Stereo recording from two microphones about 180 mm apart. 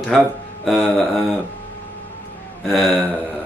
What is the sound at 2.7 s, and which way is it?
Speech, centre (ahead or behind).